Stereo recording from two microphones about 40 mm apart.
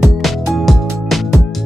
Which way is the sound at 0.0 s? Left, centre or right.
Centre.